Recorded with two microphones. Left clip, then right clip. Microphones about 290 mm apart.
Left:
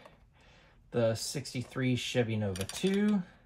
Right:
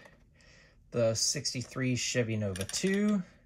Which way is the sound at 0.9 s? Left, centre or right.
Left.